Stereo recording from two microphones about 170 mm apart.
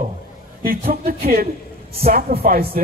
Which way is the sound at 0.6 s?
60° right (ahead or behind).